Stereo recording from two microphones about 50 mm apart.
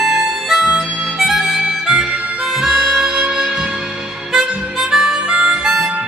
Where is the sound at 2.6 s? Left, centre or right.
Centre.